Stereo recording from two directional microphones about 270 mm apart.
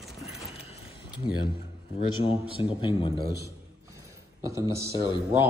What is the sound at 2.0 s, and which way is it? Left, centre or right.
A man's voice, left.